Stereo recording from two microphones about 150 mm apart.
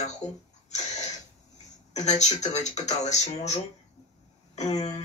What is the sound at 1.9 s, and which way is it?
Speech, 50° left (ahead or behind).